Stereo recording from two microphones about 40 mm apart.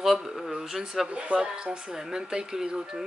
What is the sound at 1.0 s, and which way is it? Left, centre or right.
Speech, right.